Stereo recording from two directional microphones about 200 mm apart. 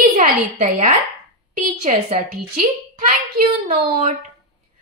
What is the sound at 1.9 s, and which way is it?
Speech, 35° right (ahead or behind).